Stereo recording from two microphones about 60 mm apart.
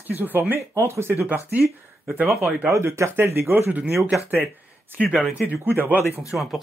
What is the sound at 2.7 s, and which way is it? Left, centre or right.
Speech, right.